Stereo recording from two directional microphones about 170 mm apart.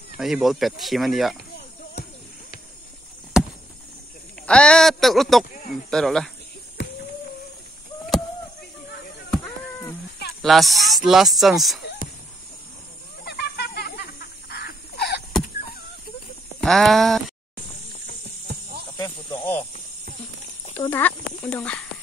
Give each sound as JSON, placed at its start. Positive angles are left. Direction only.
{"t": 0.2, "sound": "speech", "side_deg": 0}
{"t": 4.5, "sound": "speech", "side_deg": 5}
{"t": 10.4, "sound": "speech", "side_deg": 0}
{"t": 13.2, "sound": "snake", "side_deg": 70}
{"t": 14.5, "sound": "crow", "side_deg": 75}
{"t": 16.6, "sound": "speech", "side_deg": 0}
{"t": 18.0, "sound": "cricket", "side_deg": -65}
{"t": 18.9, "sound": "snake", "side_deg": 20}
{"t": 20.9, "sound": "speech", "side_deg": 10}